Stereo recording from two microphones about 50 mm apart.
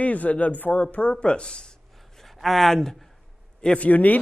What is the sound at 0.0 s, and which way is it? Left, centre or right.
Speech, left.